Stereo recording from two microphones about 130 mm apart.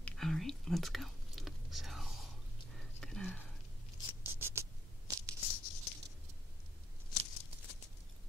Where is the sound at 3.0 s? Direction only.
5° left (ahead or behind).